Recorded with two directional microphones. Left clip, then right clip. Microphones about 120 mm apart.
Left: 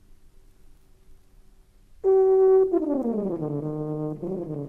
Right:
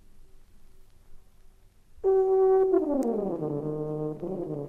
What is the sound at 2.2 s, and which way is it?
Brass instrument, 10° right (ahead or behind).